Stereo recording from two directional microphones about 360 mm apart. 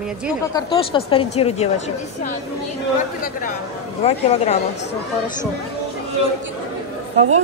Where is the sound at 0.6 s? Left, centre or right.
Centre.